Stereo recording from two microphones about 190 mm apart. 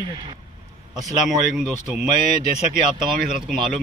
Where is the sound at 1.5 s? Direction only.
5° right (ahead or behind).